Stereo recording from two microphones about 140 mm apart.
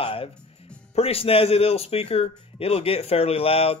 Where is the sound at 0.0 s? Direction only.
40° left (ahead or behind).